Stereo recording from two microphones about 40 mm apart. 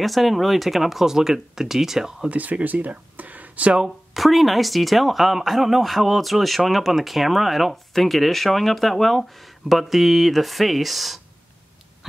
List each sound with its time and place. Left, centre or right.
0.0 s speech: centre
2.2 s speech: right
4.1 s speech: centre